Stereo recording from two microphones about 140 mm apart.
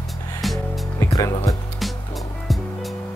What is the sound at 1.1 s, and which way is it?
Speech, 25° left (ahead or behind).